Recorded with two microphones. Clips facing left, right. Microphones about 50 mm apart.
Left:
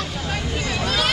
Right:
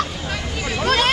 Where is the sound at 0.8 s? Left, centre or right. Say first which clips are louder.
Right 6 dB; right.